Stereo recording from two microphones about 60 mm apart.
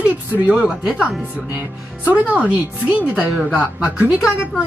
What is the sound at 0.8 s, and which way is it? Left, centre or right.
Speech, centre.